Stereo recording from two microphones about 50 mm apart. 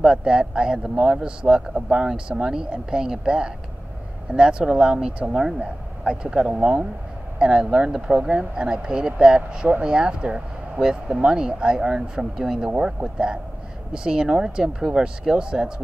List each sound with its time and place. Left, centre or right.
0.0 s a man's voice: centre
13.9 s a man's voice: centre